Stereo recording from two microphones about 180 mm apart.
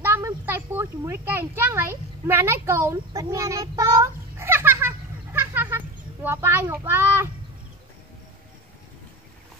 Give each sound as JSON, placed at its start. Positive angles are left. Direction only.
{"t": 0.0, "sound": "speech", "side_deg": -15}
{"t": 3.2, "sound": "child singing", "side_deg": -20}